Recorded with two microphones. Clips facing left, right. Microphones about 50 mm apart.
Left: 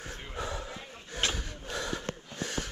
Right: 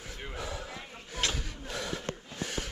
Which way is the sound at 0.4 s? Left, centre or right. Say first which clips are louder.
Left 3 dB; left.